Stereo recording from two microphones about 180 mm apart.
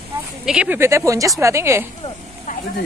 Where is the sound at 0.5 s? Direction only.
5° right (ahead or behind).